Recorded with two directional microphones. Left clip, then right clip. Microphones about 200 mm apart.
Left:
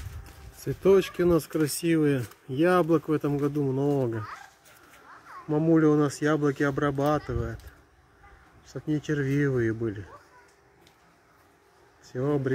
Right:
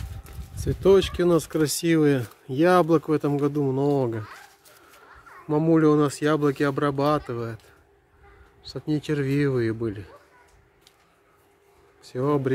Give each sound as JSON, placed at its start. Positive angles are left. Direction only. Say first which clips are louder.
{"t": 0.7, "sound": "speech", "louder": "right 3 dB", "side_deg": -10}
{"t": 5.5, "sound": "speech", "louder": "right 3 dB", "side_deg": -15}
{"t": 8.7, "sound": "speech", "louder": "right 2 dB", "side_deg": -15}
{"t": 12.1, "sound": "speech", "louder": "right 4 dB", "side_deg": -15}